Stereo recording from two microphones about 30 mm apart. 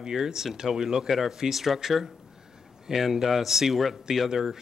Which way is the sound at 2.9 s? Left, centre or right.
Centre.